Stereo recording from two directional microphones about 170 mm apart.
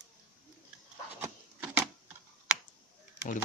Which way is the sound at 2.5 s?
5° right (ahead or behind).